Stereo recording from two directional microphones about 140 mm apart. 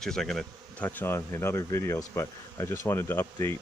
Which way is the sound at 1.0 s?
15° left (ahead or behind).